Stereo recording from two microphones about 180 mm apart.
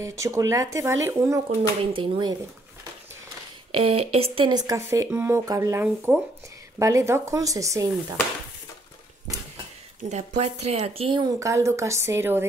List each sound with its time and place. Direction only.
0.0 s speech: 15° right (ahead or behind)
1.5 s speech: 30° right (ahead or behind)
3.7 s speech: 35° right (ahead or behind); by 8.2 s 20° right (ahead or behind)
10.0 s speech: 40° right (ahead or behind)
11.3 s speech: 15° right (ahead or behind)